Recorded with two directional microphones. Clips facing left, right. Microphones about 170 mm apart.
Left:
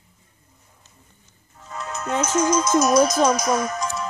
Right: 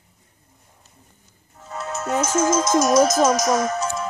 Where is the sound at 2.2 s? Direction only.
45° right (ahead or behind).